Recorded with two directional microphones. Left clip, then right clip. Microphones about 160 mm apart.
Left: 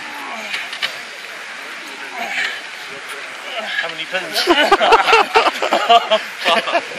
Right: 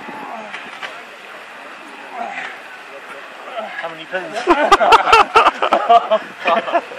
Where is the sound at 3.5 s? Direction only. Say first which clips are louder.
Left 4 dB; 15° left (ahead or behind).